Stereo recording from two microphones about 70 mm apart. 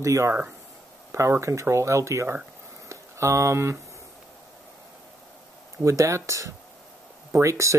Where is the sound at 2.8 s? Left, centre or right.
Right.